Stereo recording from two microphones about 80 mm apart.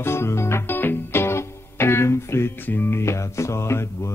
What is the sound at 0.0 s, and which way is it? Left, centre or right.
Music, left.